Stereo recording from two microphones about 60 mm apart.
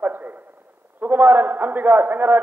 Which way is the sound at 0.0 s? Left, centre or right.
Right.